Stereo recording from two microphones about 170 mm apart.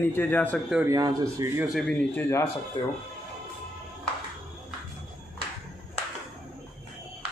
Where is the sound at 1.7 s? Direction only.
Centre (ahead or behind).